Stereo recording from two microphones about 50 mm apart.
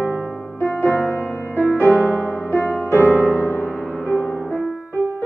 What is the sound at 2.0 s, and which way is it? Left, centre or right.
Music, left.